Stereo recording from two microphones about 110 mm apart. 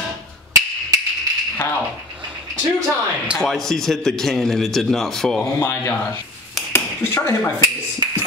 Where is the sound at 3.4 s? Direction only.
Centre (ahead or behind).